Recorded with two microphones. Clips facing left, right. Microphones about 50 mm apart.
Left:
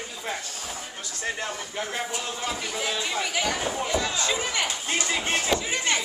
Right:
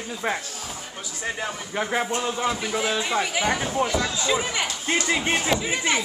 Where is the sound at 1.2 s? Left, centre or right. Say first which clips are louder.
Right 2 dB; centre.